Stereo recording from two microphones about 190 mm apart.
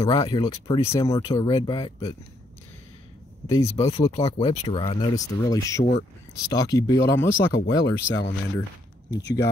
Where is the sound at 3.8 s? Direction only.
30° left (ahead or behind).